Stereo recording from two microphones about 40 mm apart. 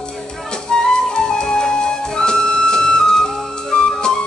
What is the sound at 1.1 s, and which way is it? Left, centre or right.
Music, centre.